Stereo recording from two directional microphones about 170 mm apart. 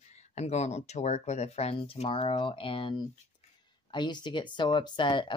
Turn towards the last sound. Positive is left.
turn(degrees=30)  # may be behind; listen again after turning